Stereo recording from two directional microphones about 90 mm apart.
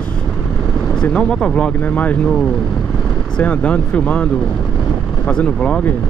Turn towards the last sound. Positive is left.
turn(degrees=15)  # may be behind; listen again after turning